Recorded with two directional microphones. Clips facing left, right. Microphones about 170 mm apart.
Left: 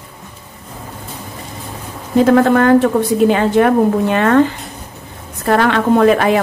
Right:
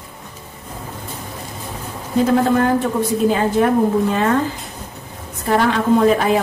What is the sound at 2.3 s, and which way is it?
A woman's voice, 65° left (ahead or behind).